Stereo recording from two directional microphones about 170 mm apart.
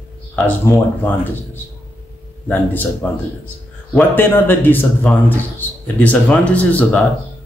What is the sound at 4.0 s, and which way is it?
Speech, 10° left (ahead or behind).